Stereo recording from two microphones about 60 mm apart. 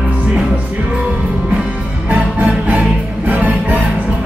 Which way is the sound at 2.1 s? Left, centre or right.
Right.